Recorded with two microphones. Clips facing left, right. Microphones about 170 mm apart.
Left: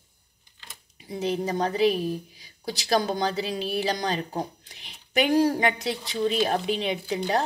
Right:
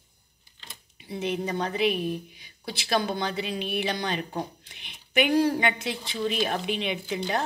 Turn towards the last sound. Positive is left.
turn(degrees=35)  # may be behind; listen again after turning